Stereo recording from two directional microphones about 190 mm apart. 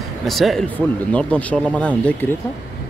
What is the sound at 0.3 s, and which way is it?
Speech, centre (ahead or behind).